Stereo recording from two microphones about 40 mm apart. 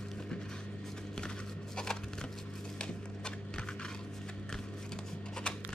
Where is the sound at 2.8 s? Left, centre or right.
Left.